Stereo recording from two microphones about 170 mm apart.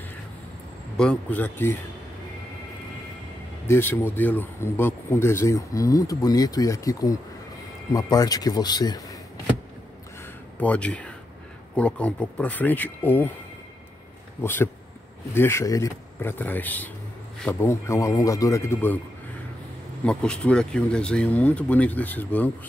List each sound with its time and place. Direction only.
0.9 s speech: 5° left (ahead or behind)
3.6 s speech: 15° left (ahead or behind)
10.6 s speech: 10° left (ahead or behind)
14.4 s speech: 15° left (ahead or behind)
20.1 s speech: 5° left (ahead or behind)